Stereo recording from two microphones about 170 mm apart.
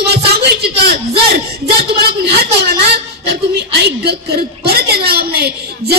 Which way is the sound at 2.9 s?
75° right (ahead or behind).